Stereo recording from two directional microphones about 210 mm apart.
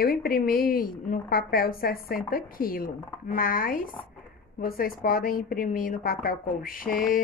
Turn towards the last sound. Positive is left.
turn(degrees=40)  # may be behind; listen again after turning